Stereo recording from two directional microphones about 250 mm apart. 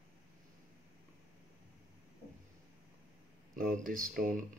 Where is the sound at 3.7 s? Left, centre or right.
Right.